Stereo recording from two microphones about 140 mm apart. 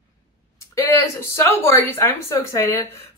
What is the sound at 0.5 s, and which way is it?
Speech, 20° left (ahead or behind).